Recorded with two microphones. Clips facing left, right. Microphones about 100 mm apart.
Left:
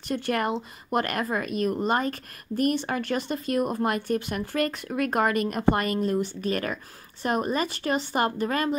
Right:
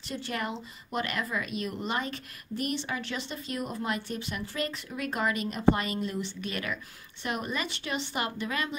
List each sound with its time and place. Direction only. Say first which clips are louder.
0.1 s speech: left 8 dB; 55° left (ahead or behind)